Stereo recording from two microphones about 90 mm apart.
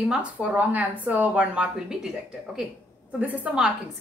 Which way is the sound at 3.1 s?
15° right (ahead or behind).